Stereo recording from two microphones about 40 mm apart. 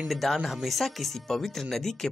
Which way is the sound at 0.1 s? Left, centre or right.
Centre.